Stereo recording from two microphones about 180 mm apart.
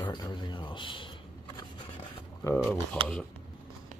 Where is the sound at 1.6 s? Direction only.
25° left (ahead or behind).